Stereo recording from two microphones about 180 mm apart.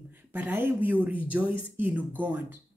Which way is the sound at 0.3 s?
10° right (ahead or behind).